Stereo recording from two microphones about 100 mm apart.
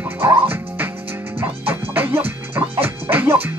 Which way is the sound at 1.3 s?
20° right (ahead or behind).